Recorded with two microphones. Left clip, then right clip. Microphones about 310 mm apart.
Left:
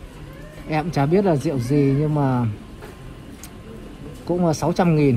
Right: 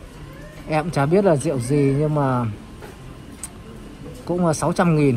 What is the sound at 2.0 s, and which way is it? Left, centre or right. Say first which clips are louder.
Speech: right 1 dB; right.